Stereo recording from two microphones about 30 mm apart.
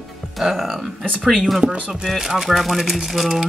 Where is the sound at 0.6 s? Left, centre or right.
Centre.